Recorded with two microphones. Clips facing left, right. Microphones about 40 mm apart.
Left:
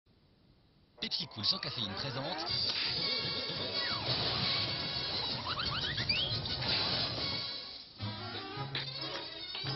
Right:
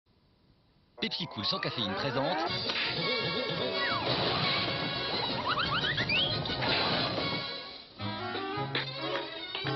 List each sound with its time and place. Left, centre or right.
0.9 s speech: right
2.8 s speech: right
3.9 s speech: right
4.3 s smash: right
5.1 s music: right